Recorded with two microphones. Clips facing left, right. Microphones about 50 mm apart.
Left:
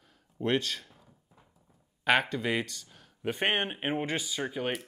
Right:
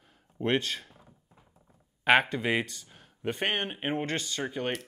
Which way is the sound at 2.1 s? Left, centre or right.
Centre.